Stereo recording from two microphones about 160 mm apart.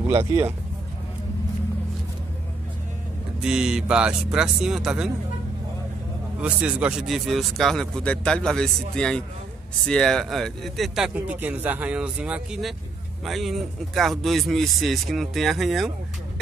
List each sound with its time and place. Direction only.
0.1 s speech: 20° right (ahead or behind)
3.4 s speech: 5° right (ahead or behind)
6.4 s speech: 5° right (ahead or behind)